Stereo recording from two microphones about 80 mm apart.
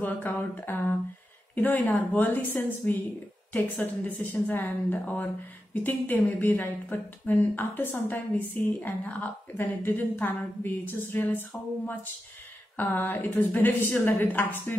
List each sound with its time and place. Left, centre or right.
0.0 s speech: left